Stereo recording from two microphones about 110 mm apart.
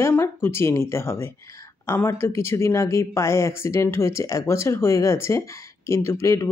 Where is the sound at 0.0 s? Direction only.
20° left (ahead or behind).